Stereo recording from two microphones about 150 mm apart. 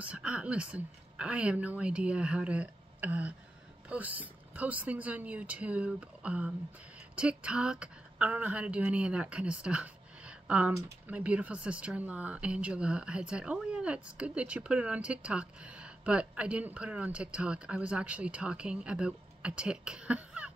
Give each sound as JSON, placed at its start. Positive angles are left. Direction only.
{"t": 0.0, "sound": "speech", "side_deg": -5}
{"t": 10.7, "sound": "speech", "side_deg": -20}
{"t": 11.1, "sound": "speech", "side_deg": -10}